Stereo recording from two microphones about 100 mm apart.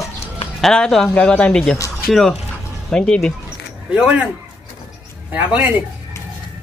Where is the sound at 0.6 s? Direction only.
5° left (ahead or behind).